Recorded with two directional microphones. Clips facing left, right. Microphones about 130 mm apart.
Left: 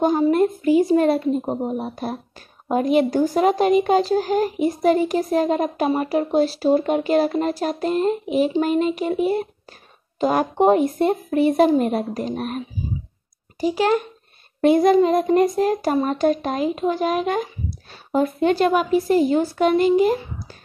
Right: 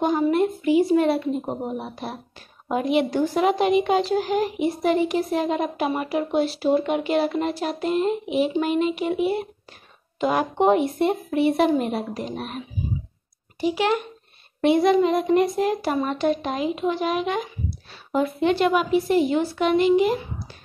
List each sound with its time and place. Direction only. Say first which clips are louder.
0.0 s a woman's voice: left 3 dB; 40° left (ahead or behind)